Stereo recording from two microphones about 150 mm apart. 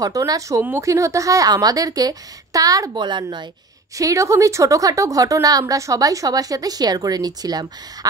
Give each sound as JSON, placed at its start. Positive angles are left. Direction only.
{"t": 0.0, "sound": "a woman's voice", "side_deg": -25}